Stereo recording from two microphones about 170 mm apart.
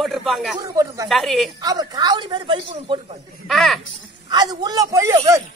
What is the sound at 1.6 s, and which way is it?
A man's voice, 25° right (ahead or behind).